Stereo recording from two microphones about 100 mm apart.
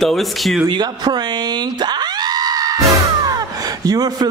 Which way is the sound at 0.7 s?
45° right (ahead or behind).